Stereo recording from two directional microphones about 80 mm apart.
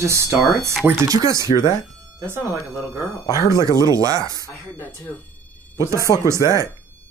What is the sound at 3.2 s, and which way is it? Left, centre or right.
Speech, left.